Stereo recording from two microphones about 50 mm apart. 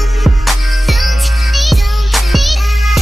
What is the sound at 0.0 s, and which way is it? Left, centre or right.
Music, centre.